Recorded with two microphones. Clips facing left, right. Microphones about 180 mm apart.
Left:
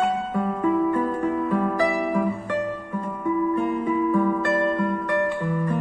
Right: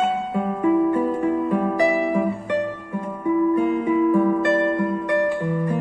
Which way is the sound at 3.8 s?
15° right (ahead or behind).